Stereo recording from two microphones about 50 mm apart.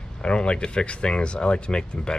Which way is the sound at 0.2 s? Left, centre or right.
Centre.